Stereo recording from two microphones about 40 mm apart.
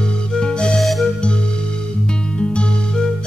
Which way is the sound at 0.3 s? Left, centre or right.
Left.